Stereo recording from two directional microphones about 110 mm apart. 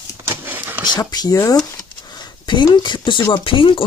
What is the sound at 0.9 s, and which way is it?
Speech, 35° left (ahead or behind).